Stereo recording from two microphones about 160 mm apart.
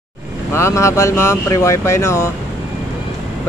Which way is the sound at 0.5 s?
15° left (ahead or behind).